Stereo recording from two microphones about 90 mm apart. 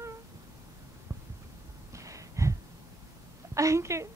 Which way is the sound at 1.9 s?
35° right (ahead or behind).